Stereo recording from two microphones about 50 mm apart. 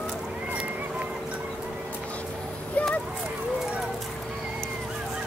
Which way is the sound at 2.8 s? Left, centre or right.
Left.